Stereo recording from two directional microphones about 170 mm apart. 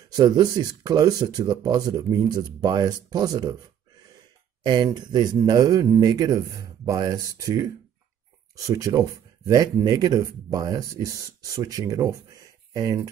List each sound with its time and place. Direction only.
0.1 s speech: 25° right (ahead or behind)
4.6 s speech: 25° right (ahead or behind)